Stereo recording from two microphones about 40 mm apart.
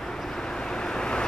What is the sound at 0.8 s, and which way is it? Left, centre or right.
Vehicle, left.